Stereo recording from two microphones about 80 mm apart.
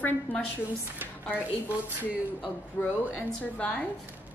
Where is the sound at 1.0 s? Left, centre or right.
Centre.